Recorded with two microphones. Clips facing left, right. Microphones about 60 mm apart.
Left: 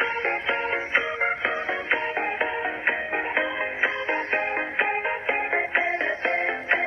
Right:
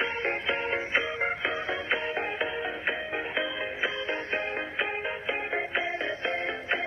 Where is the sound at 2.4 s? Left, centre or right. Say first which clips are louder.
Left 5 dB; left.